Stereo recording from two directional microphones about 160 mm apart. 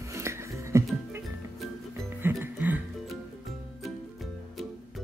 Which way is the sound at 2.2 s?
15° right (ahead or behind).